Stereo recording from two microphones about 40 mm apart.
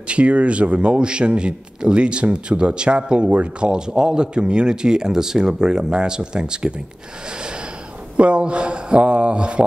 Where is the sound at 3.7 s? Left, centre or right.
Centre.